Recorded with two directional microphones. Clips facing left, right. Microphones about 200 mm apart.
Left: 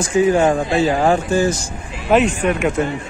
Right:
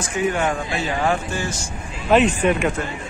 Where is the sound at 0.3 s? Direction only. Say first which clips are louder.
Left 8 dB; 35° left (ahead or behind).